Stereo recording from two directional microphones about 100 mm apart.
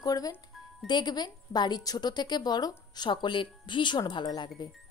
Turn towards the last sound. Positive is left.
turn(degrees=50)  # may be behind; listen again after turning